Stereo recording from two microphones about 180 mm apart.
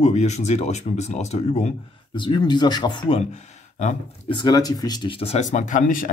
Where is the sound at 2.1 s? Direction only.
25° left (ahead or behind); by 4.0 s 40° left (ahead or behind).